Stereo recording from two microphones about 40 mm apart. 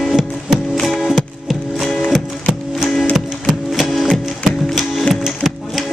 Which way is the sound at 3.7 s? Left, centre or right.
Centre.